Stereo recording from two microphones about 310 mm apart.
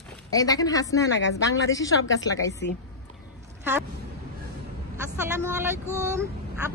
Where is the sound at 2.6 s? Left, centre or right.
Left.